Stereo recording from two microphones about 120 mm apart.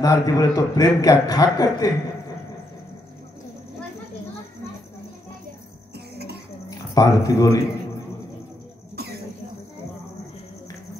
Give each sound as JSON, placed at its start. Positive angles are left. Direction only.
{"t": 0.0, "sound": "a man's voice", "side_deg": 30}
{"t": 6.9, "sound": "a man's voice", "side_deg": 30}